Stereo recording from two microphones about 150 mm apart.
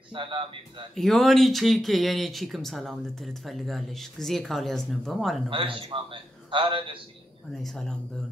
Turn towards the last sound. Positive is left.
turn(degrees=5)  # may be behind; listen again after turning